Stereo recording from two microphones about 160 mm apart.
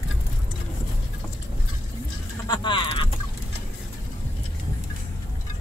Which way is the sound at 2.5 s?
30° left (ahead or behind).